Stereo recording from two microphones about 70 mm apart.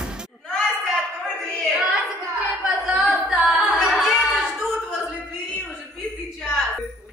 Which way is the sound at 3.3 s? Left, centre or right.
Centre.